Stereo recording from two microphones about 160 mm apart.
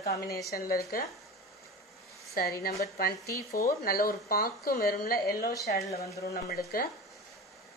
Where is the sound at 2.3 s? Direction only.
70° left (ahead or behind).